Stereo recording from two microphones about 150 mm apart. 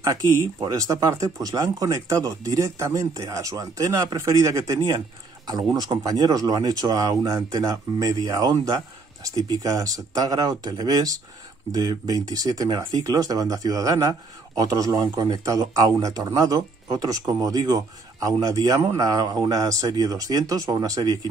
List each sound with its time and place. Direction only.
0.0 s speech: 20° right (ahead or behind)